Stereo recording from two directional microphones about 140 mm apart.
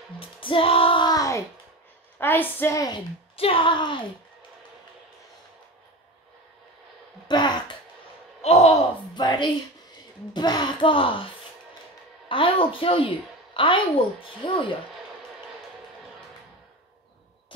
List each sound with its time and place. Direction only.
0.2 s music: 40° left (ahead or behind)
2.1 s a woman's voice: 15° left (ahead or behind)
3.3 s a woman's voice: 40° left (ahead or behind)
7.2 s a sound: 30° left (ahead or behind)
8.4 s speech: 50° left (ahead or behind)
9.1 s a woman's voice: 30° left (ahead or behind)
12.3 s a woman's voice: 40° left (ahead or behind)